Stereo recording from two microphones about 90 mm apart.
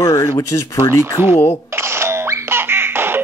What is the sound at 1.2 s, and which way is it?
Speech, 25° right (ahead or behind).